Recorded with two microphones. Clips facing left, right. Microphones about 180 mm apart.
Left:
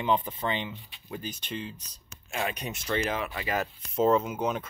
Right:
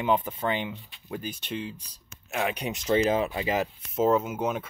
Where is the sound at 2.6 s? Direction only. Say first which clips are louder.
Right 6 dB; 15° right (ahead or behind).